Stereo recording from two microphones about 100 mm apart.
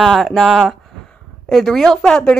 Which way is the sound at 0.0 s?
Centre (ahead or behind).